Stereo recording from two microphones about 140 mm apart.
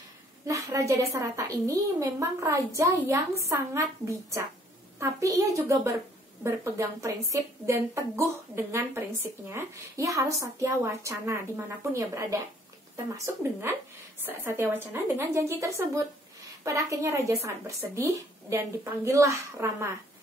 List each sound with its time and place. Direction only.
0.5 s a woman's voice: 20° right (ahead or behind)